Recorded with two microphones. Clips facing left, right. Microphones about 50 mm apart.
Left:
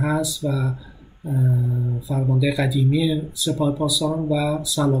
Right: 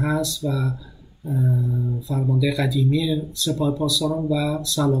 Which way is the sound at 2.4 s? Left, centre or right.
Centre.